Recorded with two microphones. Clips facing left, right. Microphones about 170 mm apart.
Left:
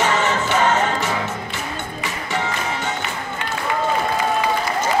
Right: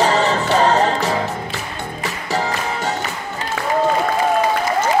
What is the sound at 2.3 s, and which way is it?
Music, 35° right (ahead or behind).